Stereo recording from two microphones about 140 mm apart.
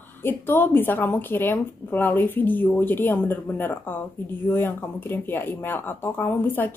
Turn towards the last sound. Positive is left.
turn(degrees=15)  # may be behind; listen again after turning